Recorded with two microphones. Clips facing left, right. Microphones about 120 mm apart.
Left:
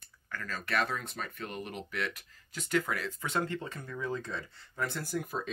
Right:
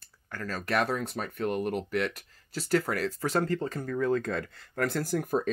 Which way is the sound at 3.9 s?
55° right (ahead or behind).